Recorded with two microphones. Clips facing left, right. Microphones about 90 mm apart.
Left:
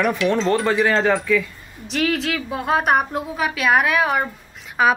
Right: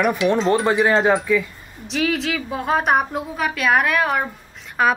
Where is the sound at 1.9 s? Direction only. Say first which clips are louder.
Even; centre (ahead or behind).